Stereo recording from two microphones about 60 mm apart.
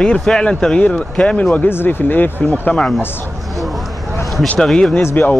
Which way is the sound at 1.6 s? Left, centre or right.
Left.